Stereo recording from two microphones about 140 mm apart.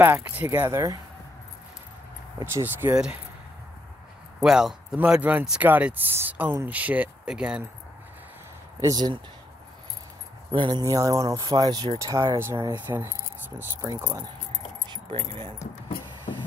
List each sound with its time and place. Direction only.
0.0 s speech: 15° right (ahead or behind)
2.4 s speech: 15° right (ahead or behind)
4.4 s speech: 5° right (ahead or behind)
8.8 s speech: 30° right (ahead or behind)
10.5 s speech: 35° right (ahead or behind)
10.8 s speech: 20° right (ahead or behind)
14.9 s speech: 40° right (ahead or behind)